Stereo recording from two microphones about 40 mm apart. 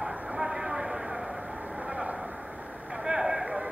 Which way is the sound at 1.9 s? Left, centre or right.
Right.